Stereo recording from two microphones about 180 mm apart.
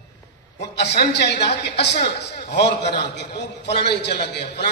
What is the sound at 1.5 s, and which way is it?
A man's voice, 70° left (ahead or behind).